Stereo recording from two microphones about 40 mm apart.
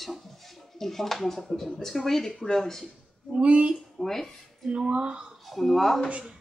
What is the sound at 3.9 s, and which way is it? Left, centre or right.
Speech, centre.